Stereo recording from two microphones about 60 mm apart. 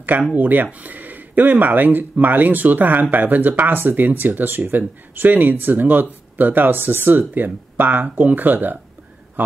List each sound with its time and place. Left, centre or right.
0.4 s speech: right